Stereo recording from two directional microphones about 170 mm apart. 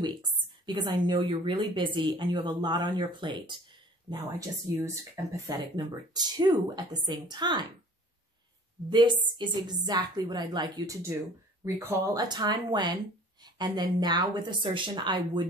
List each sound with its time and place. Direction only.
0.0 s speech: 25° right (ahead or behind)
8.9 s speech: 25° right (ahead or behind)